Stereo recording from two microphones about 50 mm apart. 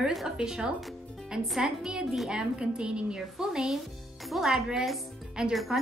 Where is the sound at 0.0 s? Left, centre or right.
Centre.